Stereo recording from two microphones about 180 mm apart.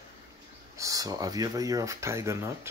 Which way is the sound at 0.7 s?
20° right (ahead or behind).